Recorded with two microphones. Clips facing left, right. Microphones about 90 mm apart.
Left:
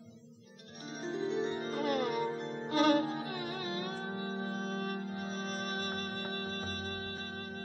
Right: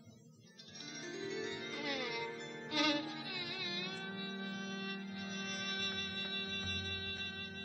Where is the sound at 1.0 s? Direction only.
35° left (ahead or behind).